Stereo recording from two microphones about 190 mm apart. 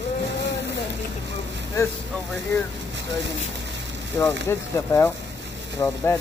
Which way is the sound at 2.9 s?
70° right (ahead or behind).